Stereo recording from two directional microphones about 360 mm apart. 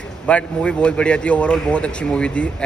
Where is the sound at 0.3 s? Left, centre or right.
Centre.